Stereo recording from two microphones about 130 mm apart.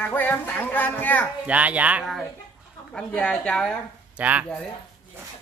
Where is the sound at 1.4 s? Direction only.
10° right (ahead or behind).